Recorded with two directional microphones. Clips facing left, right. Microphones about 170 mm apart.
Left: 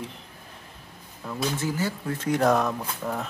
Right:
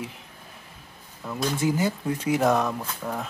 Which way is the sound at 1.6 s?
15° right (ahead or behind).